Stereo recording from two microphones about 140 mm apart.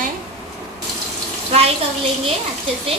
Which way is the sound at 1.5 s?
45° right (ahead or behind).